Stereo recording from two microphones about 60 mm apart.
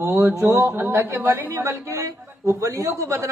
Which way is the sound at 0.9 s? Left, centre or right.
Right.